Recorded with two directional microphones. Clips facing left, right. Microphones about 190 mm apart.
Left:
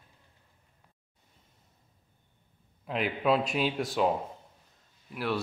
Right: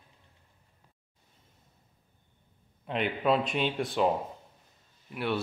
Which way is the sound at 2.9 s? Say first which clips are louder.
Even; centre (ahead or behind).